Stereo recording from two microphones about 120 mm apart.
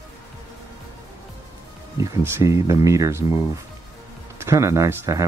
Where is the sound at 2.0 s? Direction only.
25° right (ahead or behind).